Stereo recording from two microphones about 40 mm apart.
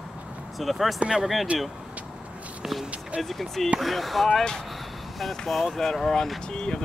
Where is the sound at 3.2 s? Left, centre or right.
Centre.